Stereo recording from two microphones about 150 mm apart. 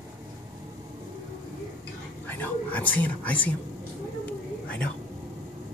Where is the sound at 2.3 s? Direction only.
10° left (ahead or behind).